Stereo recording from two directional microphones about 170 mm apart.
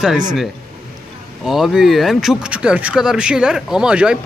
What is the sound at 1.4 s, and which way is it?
Speech, centre (ahead or behind).